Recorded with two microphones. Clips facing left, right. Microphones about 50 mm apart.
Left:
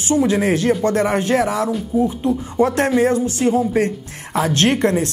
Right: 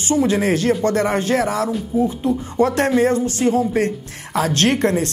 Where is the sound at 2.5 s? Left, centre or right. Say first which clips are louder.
Even; centre.